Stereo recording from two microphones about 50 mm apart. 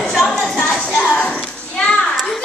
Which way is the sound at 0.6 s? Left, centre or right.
Centre.